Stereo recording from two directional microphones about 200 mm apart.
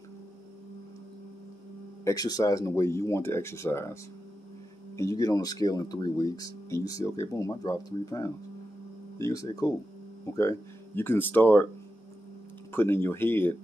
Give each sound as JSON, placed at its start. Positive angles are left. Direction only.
{"t": 2.0, "sound": "speech", "side_deg": 20}
{"t": 12.7, "sound": "speech", "side_deg": 10}